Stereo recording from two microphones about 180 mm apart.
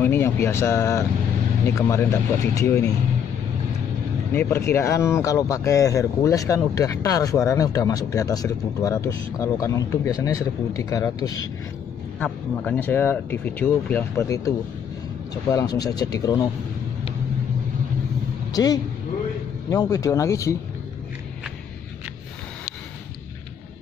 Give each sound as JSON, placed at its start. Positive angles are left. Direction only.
{"t": 0.0, "sound": "speech", "side_deg": 15}
{"t": 4.3, "sound": "speech", "side_deg": 15}
{"t": 12.2, "sound": "speech", "side_deg": 10}
{"t": 15.5, "sound": "speech", "side_deg": 20}
{"t": 18.5, "sound": "speech", "side_deg": 20}